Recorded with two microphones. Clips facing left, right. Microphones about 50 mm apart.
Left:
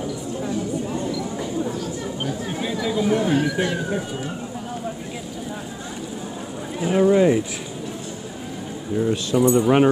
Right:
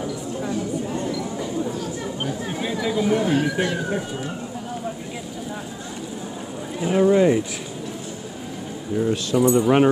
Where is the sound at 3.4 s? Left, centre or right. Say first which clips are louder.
Even; right.